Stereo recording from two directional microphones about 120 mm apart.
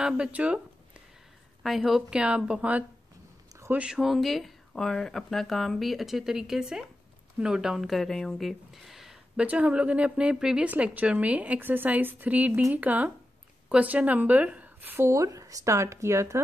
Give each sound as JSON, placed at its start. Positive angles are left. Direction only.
{"t": 0.0, "sound": "speech", "side_deg": -10}
{"t": 1.6, "sound": "a woman's voice", "side_deg": 0}